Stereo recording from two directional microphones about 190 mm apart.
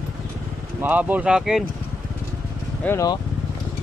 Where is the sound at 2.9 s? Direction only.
15° left (ahead or behind).